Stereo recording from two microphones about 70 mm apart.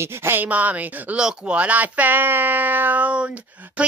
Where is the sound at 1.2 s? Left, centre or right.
Centre.